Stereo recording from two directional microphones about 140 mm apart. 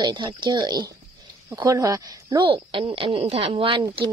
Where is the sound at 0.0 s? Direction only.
35° right (ahead or behind).